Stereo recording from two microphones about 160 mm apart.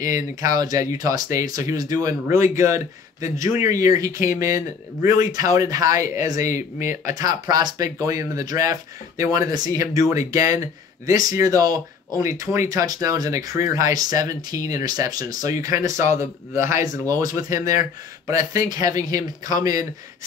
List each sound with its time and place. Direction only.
0.0 s speech: 20° right (ahead or behind)